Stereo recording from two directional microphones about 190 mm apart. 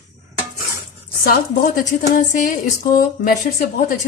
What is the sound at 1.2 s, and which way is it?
A woman's voice, 50° left (ahead or behind).